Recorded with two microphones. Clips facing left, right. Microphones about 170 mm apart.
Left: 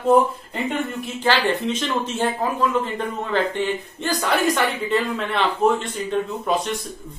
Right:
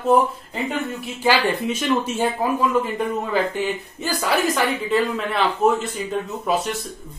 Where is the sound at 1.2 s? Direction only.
10° right (ahead or behind).